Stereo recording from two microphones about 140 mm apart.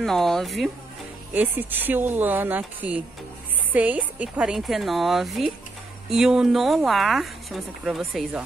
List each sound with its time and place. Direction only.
0.0 s speech: 5° left (ahead or behind)
1.3 s speech: 10° right (ahead or behind)